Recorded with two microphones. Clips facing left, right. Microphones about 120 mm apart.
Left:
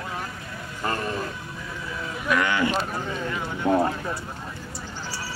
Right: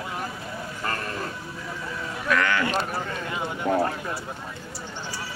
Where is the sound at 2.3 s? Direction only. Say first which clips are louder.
Left 1 dB; 15° left (ahead or behind).